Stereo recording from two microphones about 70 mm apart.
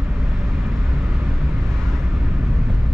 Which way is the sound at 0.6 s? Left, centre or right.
Centre.